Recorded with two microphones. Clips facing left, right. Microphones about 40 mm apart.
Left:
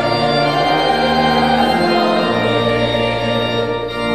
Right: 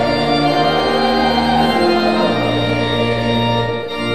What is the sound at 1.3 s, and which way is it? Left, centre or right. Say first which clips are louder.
Music: left 1 dB; left.